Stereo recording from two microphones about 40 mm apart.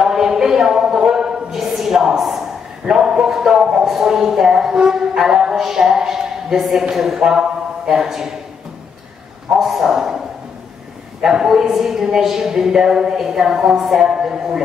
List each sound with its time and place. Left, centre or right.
0.0 s a sound: centre
2.9 s a man's voice: centre
9.6 s speech: centre
11.4 s speech: centre